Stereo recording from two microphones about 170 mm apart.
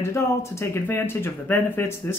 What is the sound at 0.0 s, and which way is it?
Speech, 15° left (ahead or behind).